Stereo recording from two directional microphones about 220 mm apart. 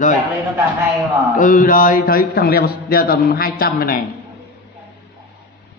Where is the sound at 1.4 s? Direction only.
35° left (ahead or behind).